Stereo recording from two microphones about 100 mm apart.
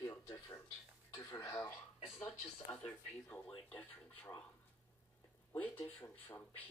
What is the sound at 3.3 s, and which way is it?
Speech, 5° left (ahead or behind).